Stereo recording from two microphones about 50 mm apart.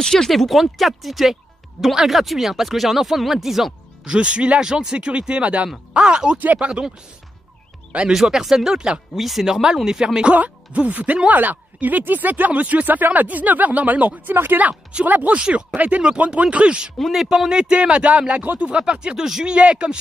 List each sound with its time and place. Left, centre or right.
0.0 s speech: centre
0.3 s speech: centre
4.0 s speech: right
6.4 s speech: right
8.1 s speech: centre
9.1 s speech: centre
10.2 s speech: right
14.3 s speech: right
14.6 s speech: right
17.0 s speech: centre
17.5 s speech: centre